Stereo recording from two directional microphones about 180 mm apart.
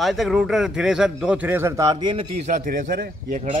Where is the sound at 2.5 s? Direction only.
50° right (ahead or behind).